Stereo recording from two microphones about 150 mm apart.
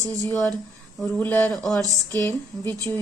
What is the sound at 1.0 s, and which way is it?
Speech, 10° left (ahead or behind).